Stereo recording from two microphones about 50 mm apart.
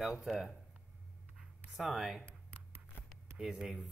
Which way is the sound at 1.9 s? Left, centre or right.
Centre.